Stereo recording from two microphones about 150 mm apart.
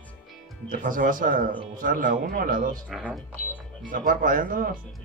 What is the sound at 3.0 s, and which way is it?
Speech, 10° left (ahead or behind).